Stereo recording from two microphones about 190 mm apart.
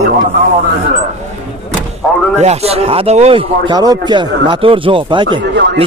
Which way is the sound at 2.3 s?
35° right (ahead or behind).